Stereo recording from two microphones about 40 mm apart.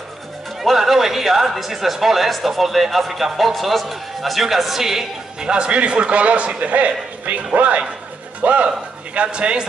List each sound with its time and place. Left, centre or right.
0.6 s speech: centre
5.4 s a man's voice: right